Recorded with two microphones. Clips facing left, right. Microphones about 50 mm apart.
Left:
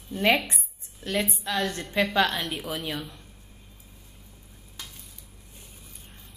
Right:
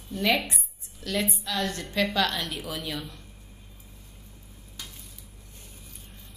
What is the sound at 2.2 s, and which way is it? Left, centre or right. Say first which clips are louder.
A woman's voice: left 2 dB; centre.